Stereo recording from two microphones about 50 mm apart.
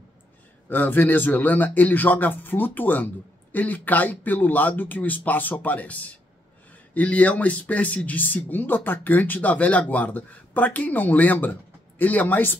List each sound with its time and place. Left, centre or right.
0.7 s speech: left